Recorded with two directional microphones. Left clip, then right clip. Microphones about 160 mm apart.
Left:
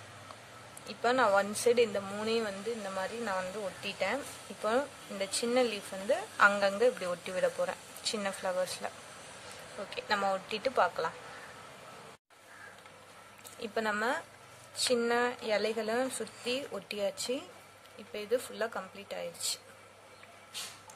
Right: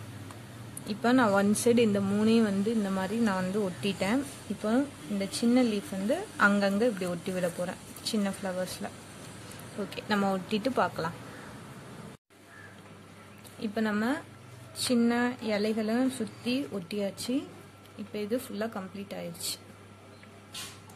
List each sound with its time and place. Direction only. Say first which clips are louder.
0.8 s speech: right 2 dB; centre (ahead or behind)
4.6 s speech: right 1 dB; 15° left (ahead or behind)
9.8 s speech: right 1 dB; centre (ahead or behind)
13.6 s speech: right 1 dB; 20° left (ahead or behind)